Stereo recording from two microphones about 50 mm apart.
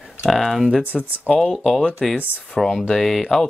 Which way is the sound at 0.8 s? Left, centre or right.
Right.